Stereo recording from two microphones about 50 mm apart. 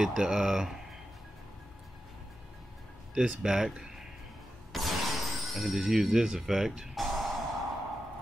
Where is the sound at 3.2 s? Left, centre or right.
Centre.